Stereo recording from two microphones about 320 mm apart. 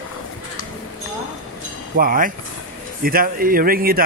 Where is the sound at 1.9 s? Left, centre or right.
Right.